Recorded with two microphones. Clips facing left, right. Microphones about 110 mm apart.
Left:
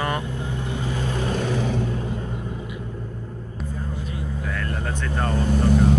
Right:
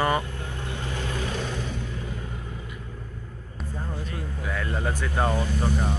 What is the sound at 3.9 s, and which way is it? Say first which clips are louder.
Vehicle: left 3 dB; 20° left (ahead or behind).